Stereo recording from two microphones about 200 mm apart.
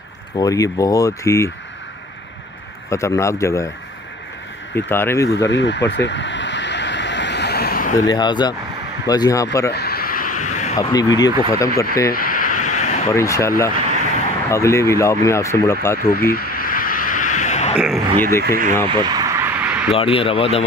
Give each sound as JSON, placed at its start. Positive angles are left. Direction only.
{"t": 0.4, "sound": "speech", "side_deg": 15}
{"t": 2.9, "sound": "speech", "side_deg": 15}
{"t": 4.8, "sound": "speech", "side_deg": 10}
{"t": 5.5, "sound": "vehicle", "side_deg": 60}
{"t": 8.1, "sound": "speech", "side_deg": 20}
{"t": 9.7, "sound": "a sound", "side_deg": 50}
{"t": 10.8, "sound": "speech", "side_deg": 20}
{"t": 12.1, "sound": "a sound", "side_deg": 45}
{"t": 13.1, "sound": "speech", "side_deg": 15}
{"t": 16.0, "sound": "a sound", "side_deg": 45}
{"t": 17.7, "sound": "speech", "side_deg": -5}
{"t": 18.4, "sound": "speech", "side_deg": -50}
{"t": 18.9, "sound": "a sound", "side_deg": -20}
{"t": 19.9, "sound": "speech", "side_deg": 30}